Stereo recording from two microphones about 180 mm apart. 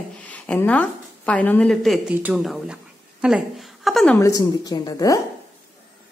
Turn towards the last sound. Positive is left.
turn(degrees=20)  # may be behind; listen again after turning